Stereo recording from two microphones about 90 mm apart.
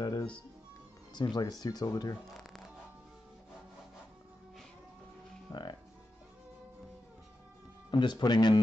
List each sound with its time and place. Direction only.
0.0 s music: 50° left (ahead or behind)
1.1 s speech: 50° left (ahead or behind)
5.5 s speech: 55° left (ahead or behind)
7.9 s speech: 50° left (ahead or behind)